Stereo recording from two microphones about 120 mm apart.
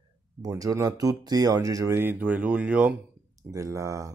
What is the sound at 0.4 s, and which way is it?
Speech, 30° right (ahead or behind).